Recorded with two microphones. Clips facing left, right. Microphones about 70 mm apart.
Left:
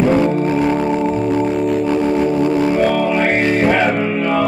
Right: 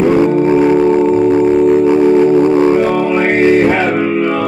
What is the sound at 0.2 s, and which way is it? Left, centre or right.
Organ, centre.